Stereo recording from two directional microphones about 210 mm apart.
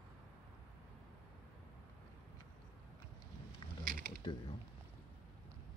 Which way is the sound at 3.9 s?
40° right (ahead or behind).